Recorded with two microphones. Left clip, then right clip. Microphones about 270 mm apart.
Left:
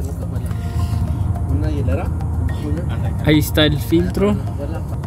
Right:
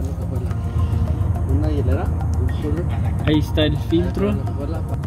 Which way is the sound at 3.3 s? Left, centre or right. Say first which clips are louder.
Left 4 dB; left.